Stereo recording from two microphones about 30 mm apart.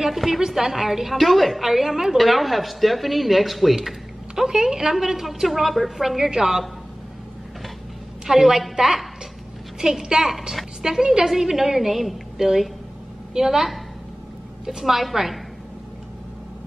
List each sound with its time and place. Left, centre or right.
0.1 s a woman's voice: centre
1.1 s a woman's voice: centre
2.1 s speech: centre
4.4 s a woman's voice: centre
8.3 s a woman's voice: centre
9.8 s a woman's voice: centre
14.7 s a woman's voice: centre